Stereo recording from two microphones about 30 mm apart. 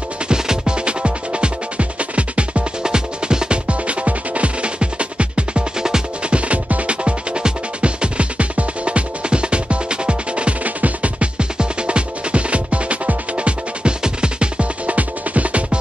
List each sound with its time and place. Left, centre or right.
0.3 s music: right
2.8 s music: right
3.6 s music: right
5.8 s music: right
6.3 s music: right
10.6 s music: right
11.3 s music: right
14.9 s music: right